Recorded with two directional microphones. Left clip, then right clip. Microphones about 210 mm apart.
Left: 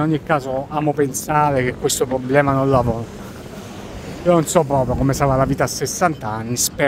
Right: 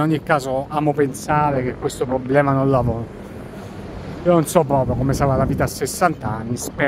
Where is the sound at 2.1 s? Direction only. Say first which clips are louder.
Right 1 dB; 10° left (ahead or behind).